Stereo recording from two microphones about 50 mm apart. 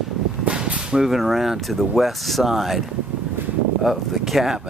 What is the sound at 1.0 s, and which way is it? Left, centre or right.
Speech, centre.